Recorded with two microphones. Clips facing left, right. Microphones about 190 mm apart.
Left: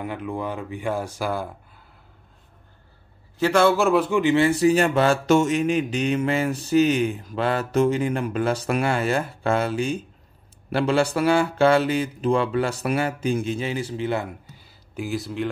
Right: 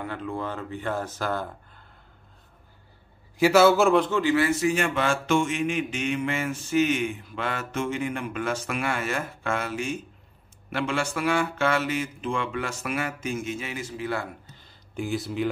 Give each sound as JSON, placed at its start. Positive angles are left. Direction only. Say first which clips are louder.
{"t": 0.0, "sound": "speech", "louder": "left 3 dB", "side_deg": 15}
{"t": 3.3, "sound": "a man's voice", "louder": "right 1 dB", "side_deg": -5}
{"t": 4.2, "sound": "speech", "louder": "left 4 dB", "side_deg": 25}
{"t": 14.5, "sound": "a sound", "louder": "left 1 dB", "side_deg": 5}